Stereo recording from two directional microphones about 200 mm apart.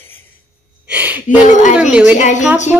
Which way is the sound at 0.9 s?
5° right (ahead or behind).